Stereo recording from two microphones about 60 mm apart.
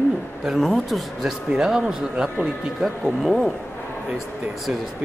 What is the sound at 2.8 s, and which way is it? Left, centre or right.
Speech, centre.